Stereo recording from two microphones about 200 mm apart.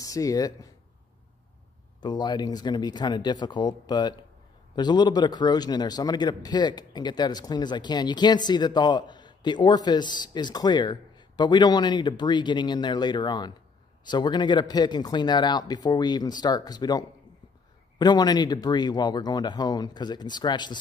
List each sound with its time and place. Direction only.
0.0 s speech: 15° left (ahead or behind)
2.0 s a man's voice: 20° left (ahead or behind)